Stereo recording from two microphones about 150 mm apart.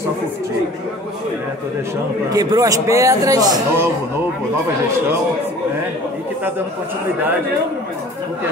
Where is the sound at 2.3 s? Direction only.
25° right (ahead or behind).